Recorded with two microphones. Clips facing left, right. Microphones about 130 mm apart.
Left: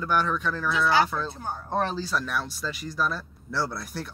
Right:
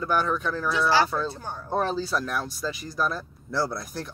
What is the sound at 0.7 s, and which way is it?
Speech, 30° right (ahead or behind).